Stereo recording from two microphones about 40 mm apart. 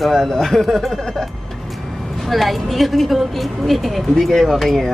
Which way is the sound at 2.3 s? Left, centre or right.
Centre.